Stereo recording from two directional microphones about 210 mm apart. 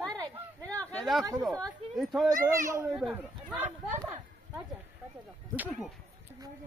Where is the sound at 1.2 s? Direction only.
15° right (ahead or behind).